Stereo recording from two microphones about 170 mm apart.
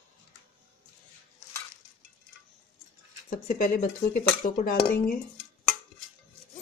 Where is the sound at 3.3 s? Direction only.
50° left (ahead or behind).